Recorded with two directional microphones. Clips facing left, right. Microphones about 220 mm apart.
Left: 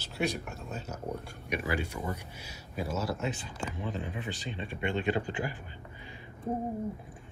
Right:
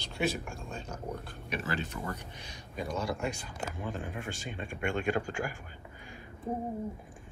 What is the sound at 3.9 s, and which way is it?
Speech, 45° right (ahead or behind).